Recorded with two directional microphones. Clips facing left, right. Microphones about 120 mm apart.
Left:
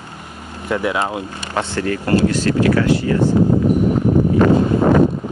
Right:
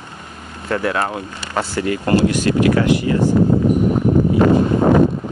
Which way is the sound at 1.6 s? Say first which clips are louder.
Even; 10° right (ahead or behind).